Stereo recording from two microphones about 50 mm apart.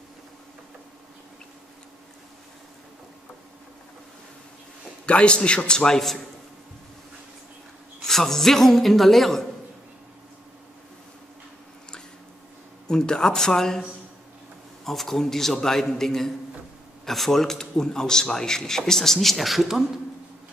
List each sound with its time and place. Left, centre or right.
5.0 s a man's voice: left
8.0 s a man's voice: centre
12.8 s a man's voice: centre
14.9 s a man's voice: centre